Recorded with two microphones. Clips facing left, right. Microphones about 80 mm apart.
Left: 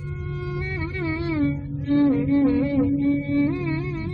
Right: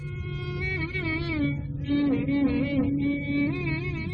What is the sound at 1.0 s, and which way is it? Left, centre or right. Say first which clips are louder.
Music: left 6 dB; left.